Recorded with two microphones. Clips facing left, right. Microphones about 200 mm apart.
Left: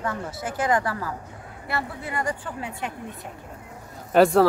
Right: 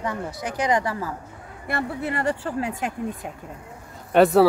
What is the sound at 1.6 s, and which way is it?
Speech, 60° right (ahead or behind).